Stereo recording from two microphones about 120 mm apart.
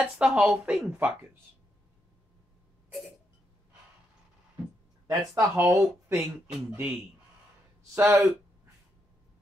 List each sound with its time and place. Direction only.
0.0 s speech: 10° right (ahead or behind)
5.0 s speech: 25° right (ahead or behind)